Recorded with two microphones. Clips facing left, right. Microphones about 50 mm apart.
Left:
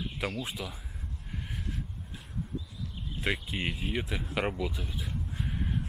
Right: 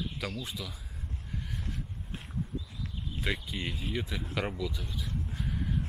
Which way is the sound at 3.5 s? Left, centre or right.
Left.